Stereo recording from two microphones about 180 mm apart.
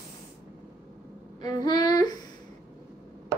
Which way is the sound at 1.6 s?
20° left (ahead or behind).